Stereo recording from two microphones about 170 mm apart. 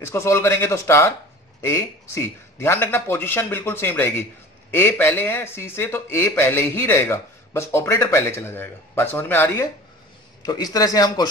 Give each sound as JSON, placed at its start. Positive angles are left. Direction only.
{"t": 0.0, "sound": "speech", "side_deg": 15}
{"t": 10.4, "sound": "a man's voice", "side_deg": 20}